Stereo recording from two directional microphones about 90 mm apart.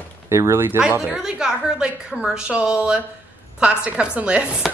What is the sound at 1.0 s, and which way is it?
A woman's voice, 5° right (ahead or behind).